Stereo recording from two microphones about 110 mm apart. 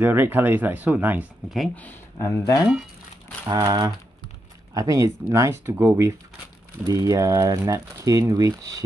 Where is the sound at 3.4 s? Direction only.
35° right (ahead or behind).